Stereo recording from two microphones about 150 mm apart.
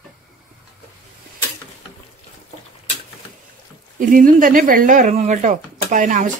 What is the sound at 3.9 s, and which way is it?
Speech, 60° right (ahead or behind).